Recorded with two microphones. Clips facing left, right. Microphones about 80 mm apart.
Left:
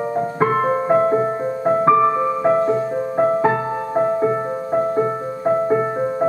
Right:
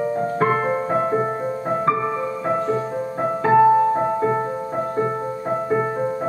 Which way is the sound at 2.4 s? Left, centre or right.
Left.